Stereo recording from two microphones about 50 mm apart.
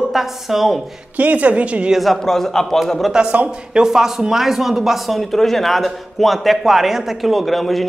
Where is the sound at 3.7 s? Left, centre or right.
Centre.